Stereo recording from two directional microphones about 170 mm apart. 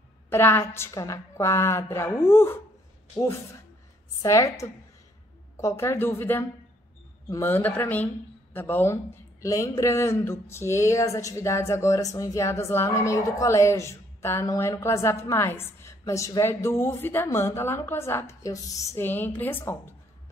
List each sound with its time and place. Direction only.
0.3 s speech: 15° left (ahead or behind)
4.2 s a woman's voice: 20° left (ahead or behind)